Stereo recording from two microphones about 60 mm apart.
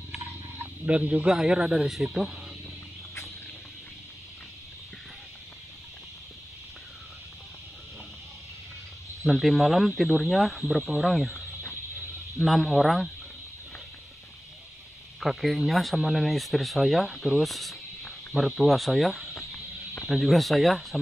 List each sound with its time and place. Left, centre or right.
0.8 s speech: right
1.3 s speech: centre
9.2 s speech: centre
11.5 s a sound: left
12.4 s speech: centre
15.1 s speech: centre